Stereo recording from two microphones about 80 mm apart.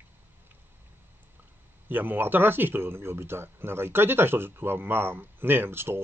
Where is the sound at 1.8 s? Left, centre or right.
Right.